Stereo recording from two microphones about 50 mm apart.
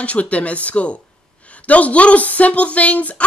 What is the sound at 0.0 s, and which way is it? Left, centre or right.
Speech, left.